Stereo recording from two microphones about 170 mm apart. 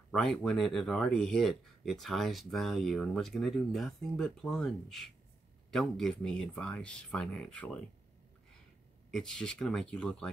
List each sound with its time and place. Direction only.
0.1 s speech: 5° left (ahead or behind)
9.1 s speech: 5° left (ahead or behind)